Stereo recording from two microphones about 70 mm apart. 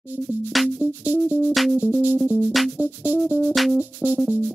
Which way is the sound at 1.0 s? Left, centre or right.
Right.